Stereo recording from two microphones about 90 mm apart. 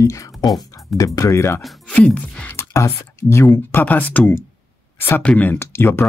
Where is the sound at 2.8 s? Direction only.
30° left (ahead or behind).